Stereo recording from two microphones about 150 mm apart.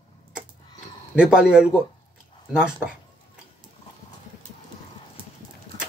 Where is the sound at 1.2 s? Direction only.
5° right (ahead or behind).